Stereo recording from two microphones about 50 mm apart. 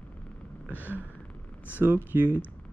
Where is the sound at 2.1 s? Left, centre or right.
Right.